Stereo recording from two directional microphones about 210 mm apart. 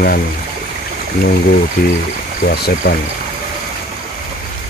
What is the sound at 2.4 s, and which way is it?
Speech, 50° left (ahead or behind).